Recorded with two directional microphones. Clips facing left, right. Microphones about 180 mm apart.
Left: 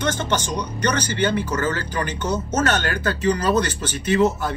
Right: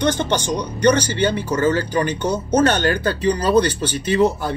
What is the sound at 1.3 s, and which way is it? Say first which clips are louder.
Speech: right 4 dB; 30° right (ahead or behind).